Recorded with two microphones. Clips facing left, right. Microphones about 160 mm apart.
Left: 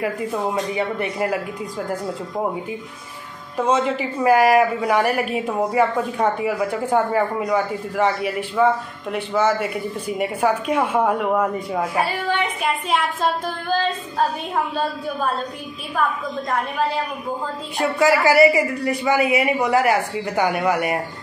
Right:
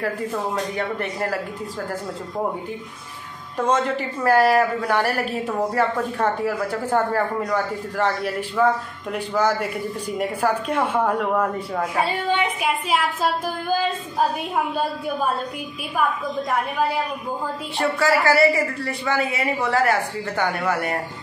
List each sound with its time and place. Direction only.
0.0 s speech: 10° left (ahead or behind)
3.5 s speech: 10° left (ahead or behind)
12.0 s a woman's voice: 15° right (ahead or behind)
12.6 s speech: 5° right (ahead or behind)
17.9 s speech: 20° left (ahead or behind)